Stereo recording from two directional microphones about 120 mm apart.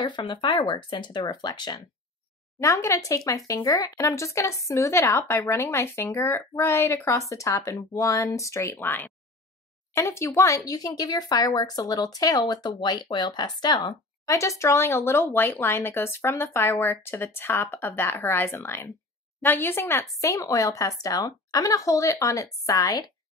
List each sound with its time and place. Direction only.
0.0 s speech: 40° left (ahead or behind)
2.6 s speech: 25° left (ahead or behind)